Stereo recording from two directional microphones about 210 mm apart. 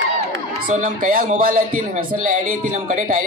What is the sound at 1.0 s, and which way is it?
Speech, 40° right (ahead or behind).